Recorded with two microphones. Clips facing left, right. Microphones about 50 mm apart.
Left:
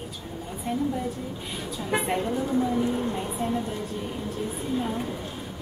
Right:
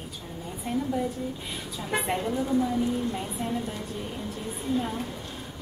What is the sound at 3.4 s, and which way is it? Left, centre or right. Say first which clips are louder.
A woman's voice: left 4 dB; centre.